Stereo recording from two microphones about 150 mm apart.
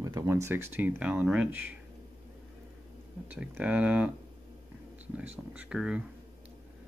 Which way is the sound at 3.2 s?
10° right (ahead or behind).